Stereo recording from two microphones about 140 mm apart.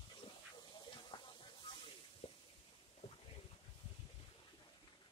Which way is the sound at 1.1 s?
30° left (ahead or behind).